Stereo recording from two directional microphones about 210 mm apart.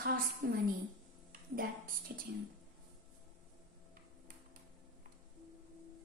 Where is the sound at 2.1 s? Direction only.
45° right (ahead or behind).